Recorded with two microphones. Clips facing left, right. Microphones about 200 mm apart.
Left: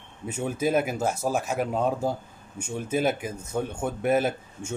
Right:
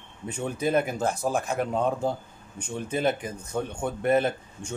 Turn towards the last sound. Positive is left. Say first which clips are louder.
# left 1 dB
turn(degrees=5)  # may be behind; listen again after turning